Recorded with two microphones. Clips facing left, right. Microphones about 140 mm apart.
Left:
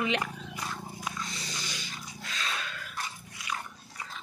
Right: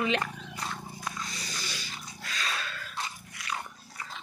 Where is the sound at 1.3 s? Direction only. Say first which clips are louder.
Even; 25° left (ahead or behind).